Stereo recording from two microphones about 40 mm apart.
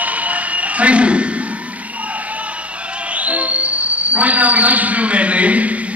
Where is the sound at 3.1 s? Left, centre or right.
Right.